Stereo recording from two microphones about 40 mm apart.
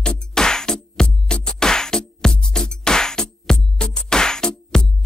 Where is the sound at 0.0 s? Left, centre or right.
Centre.